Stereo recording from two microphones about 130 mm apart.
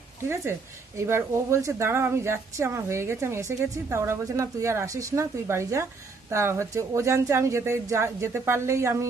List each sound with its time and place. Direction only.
0.3 s a woman's voice: 20° right (ahead or behind)